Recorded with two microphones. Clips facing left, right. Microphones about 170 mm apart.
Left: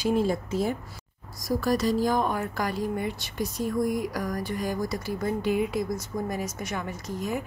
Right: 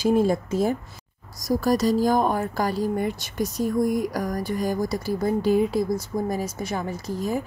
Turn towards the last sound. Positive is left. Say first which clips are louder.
# right 4 dB
turn(degrees=-35)  # may be behind; listen again after turning